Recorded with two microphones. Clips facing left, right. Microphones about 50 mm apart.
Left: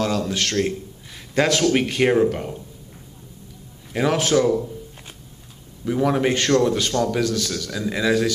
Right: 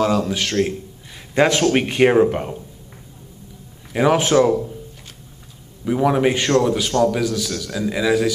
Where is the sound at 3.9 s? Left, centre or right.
Centre.